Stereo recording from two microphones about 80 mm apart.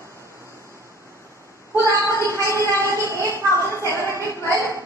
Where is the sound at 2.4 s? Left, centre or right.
Right.